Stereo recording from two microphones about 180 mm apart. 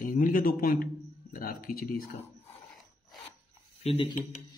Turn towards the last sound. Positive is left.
turn(degrees=35)  # may be behind; listen again after turning